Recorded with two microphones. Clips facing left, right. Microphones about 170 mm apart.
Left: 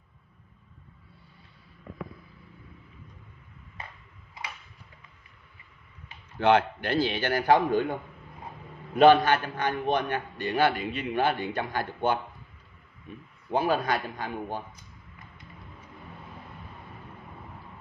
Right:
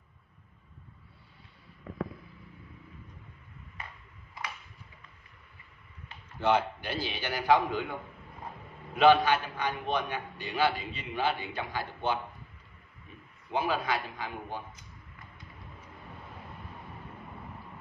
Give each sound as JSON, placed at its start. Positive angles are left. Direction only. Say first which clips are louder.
{"t": 6.4, "sound": "a man's voice", "louder": "left 5 dB", "side_deg": 65}
{"t": 8.9, "sound": "a man's voice", "louder": "left 4 dB", "side_deg": 50}
{"t": 13.5, "sound": "a man's voice", "louder": "left 4 dB", "side_deg": 40}